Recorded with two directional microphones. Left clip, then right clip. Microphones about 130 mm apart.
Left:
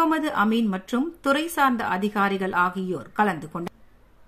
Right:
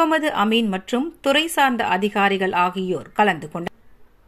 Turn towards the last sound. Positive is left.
turn(degrees=-25)  # may be behind; listen again after turning